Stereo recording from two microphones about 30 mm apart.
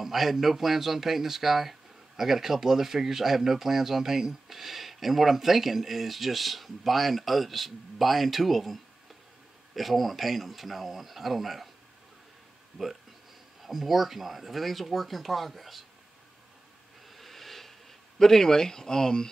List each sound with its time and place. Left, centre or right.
0.0 s speech: centre
9.8 s speech: centre
13.6 s speech: centre
17.1 s a sound: centre
18.2 s speech: centre